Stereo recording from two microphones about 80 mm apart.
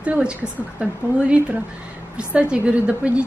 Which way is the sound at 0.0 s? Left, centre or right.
Centre.